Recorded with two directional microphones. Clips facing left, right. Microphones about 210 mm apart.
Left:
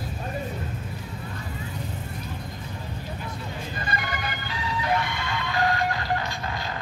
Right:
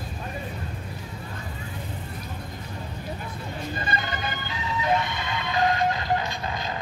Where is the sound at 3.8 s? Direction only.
25° right (ahead or behind).